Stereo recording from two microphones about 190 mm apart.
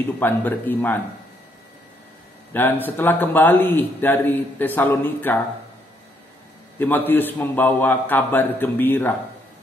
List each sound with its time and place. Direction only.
0.2 s a man's voice: 10° left (ahead or behind)
2.5 s a man's voice: 10° left (ahead or behind)
6.8 s a man's voice: 10° left (ahead or behind)